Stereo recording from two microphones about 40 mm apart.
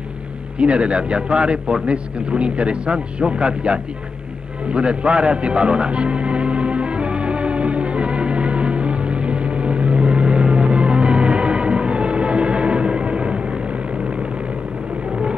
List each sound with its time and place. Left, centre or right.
0.6 s a man's voice: right
4.6 s music: right